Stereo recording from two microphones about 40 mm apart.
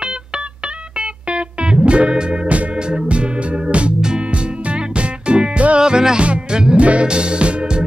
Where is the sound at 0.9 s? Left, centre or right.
Right.